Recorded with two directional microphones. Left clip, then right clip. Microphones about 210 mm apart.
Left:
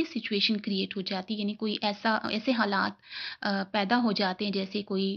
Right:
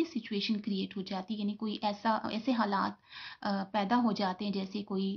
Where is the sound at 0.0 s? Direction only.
15° left (ahead or behind).